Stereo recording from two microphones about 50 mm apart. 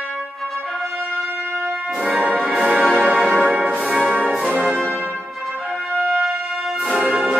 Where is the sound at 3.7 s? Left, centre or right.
Centre.